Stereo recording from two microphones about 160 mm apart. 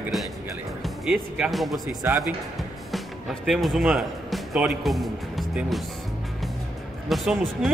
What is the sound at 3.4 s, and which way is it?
Speech, centre (ahead or behind).